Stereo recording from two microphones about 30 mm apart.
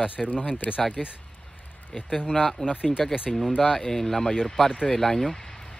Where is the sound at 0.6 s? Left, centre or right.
Left.